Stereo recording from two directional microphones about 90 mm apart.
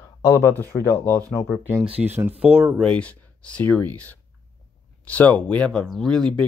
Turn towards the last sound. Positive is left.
turn(degrees=5)  # may be behind; listen again after turning